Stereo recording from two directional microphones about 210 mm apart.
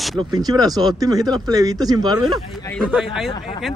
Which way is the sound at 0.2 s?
20° right (ahead or behind).